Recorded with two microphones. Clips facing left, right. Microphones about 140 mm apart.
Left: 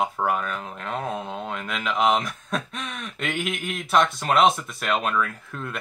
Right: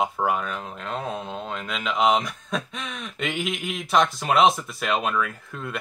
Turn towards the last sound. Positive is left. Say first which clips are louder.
# right 1 dB
turn(degrees=0)  # may be behind; listen again after turning